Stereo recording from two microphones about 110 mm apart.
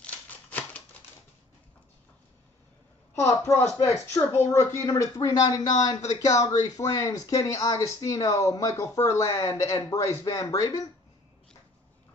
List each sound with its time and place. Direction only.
0.0 s typewriter: 15° left (ahead or behind)
3.2 s speech: 25° left (ahead or behind)